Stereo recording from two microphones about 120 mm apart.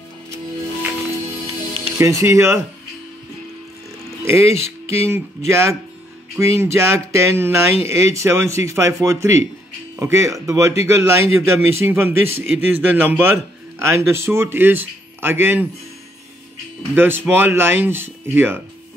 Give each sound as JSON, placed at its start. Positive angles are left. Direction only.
{"t": 2.0, "sound": "speech", "side_deg": -25}
{"t": 4.2, "sound": "speech", "side_deg": -25}
{"t": 16.9, "sound": "speech", "side_deg": -20}